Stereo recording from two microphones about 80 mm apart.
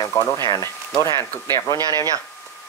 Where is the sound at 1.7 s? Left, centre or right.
Right.